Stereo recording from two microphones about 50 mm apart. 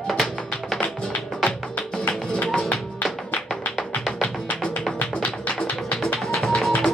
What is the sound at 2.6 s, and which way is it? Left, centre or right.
Music, left.